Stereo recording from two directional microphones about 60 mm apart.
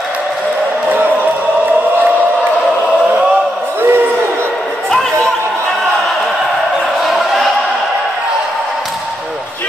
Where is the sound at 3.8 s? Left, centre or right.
Right.